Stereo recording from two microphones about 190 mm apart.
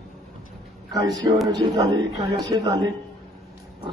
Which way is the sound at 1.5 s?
20° right (ahead or behind).